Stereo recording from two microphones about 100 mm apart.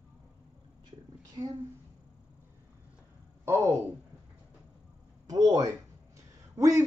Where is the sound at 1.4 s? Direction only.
50° right (ahead or behind).